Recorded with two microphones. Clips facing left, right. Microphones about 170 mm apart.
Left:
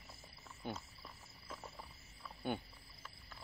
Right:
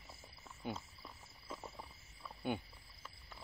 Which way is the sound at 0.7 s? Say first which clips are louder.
Right 1 dB; 5° right (ahead or behind).